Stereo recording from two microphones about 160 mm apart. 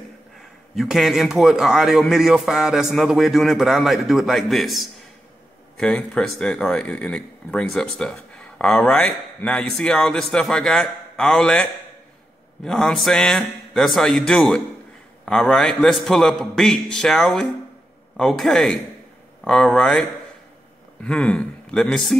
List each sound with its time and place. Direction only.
0.4 s speech: centre (ahead or behind)